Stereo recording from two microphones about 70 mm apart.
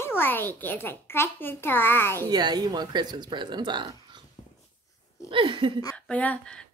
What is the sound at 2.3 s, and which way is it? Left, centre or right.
Speech, right.